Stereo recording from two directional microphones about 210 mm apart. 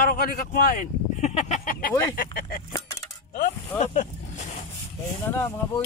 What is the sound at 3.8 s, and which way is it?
Speech, 35° left (ahead or behind).